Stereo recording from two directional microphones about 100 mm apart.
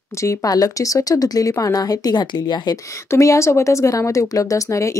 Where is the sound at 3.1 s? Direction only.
30° left (ahead or behind).